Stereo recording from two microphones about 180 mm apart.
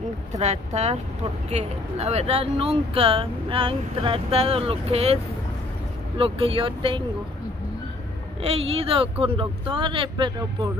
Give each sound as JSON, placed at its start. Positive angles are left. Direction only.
{"t": 0.4, "sound": "speech", "side_deg": -40}
{"t": 8.4, "sound": "speech", "side_deg": -35}